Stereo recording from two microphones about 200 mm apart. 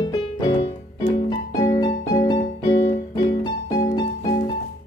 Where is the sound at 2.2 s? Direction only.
25° left (ahead or behind).